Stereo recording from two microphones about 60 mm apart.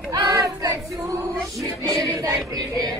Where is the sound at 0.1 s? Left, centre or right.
Right.